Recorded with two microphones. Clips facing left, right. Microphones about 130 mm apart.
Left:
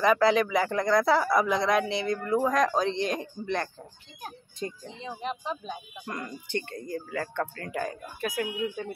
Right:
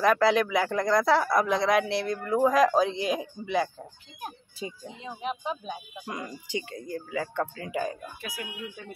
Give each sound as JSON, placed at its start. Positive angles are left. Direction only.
{"t": 0.0, "sound": "speech", "side_deg": 0}
{"t": 8.2, "sound": "speech", "side_deg": 50}